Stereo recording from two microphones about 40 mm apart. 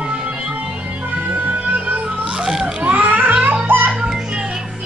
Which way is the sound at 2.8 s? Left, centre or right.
Right.